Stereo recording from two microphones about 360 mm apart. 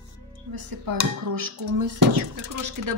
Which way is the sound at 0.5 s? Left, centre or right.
Right.